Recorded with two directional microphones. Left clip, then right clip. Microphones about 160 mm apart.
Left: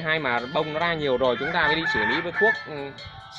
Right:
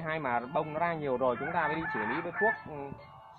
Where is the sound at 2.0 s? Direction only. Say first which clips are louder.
Left 9 dB; 90° left.